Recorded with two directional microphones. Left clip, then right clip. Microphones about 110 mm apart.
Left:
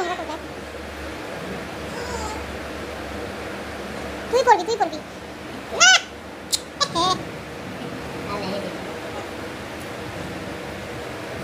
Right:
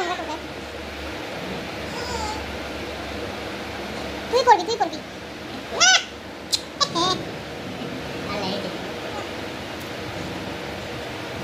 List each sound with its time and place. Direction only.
4.3 s speech: 5° left (ahead or behind)
5.8 s owl: 5° left (ahead or behind)
6.5 s cat: 5° left (ahead or behind)